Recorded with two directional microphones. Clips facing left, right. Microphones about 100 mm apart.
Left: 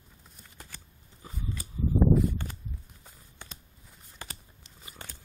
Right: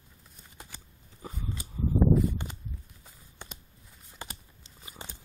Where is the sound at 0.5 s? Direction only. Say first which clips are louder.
Right 1 dB; 15° right (ahead or behind).